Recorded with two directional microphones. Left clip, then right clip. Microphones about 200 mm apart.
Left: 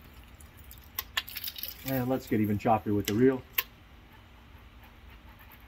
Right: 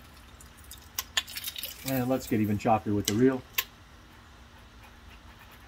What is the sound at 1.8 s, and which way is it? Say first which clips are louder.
Speech: right 2 dB; 35° right (ahead or behind).